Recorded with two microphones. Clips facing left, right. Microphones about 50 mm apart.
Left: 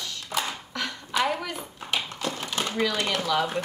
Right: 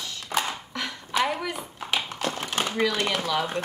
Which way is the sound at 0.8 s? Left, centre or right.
Centre.